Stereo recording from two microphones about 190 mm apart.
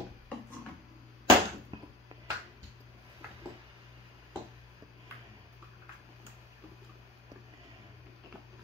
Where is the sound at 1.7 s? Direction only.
25° right (ahead or behind).